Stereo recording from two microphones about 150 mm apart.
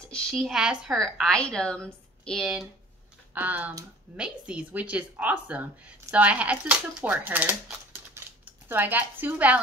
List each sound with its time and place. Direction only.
0.0 s a woman's voice: 5° left (ahead or behind)
3.3 s a woman's voice: 10° right (ahead or behind)